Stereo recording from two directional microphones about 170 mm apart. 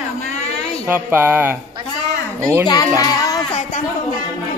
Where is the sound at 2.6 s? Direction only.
20° left (ahead or behind).